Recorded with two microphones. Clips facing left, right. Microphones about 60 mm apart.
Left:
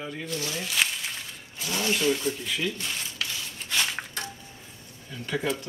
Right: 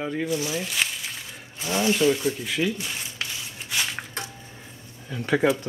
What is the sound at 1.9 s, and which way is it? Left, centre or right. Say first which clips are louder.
Speech: right 3 dB; centre.